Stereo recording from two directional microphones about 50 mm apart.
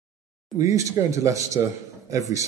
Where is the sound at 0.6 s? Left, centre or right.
Right.